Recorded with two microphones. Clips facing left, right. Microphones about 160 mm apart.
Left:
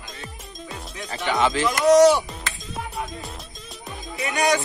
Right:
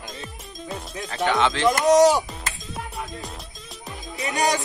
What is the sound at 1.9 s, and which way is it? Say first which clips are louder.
Speech: left 2 dB; 40° right (ahead or behind).